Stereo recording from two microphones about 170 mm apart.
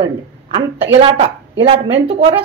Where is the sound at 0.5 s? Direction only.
35° right (ahead or behind).